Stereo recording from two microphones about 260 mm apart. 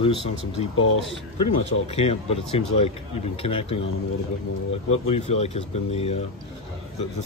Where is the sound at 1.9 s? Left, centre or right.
Left.